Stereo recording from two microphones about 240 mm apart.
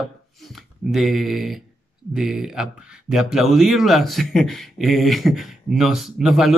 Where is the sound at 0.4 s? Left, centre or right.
Centre.